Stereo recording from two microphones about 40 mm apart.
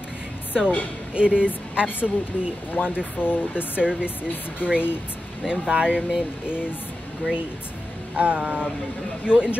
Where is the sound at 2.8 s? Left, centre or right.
Left.